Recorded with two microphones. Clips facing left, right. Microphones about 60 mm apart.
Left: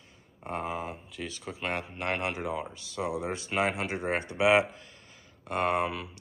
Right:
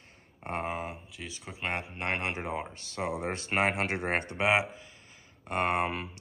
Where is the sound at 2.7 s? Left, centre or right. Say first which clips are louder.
Left 1 dB; right.